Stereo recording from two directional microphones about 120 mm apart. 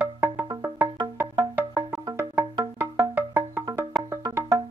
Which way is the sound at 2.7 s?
30° right (ahead or behind).